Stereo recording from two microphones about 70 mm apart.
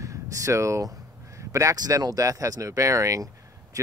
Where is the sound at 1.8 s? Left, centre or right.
Right.